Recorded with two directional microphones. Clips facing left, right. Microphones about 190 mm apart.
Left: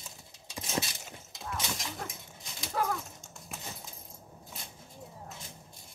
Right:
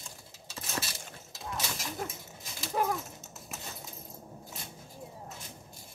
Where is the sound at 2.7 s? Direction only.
5° right (ahead or behind).